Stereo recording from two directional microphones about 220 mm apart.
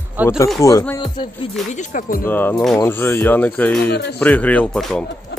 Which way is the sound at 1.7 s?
35° left (ahead or behind).